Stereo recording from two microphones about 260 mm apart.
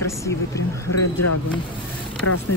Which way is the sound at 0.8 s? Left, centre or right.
Left.